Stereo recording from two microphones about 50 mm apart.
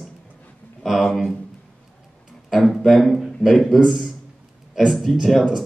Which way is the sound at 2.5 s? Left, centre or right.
Centre.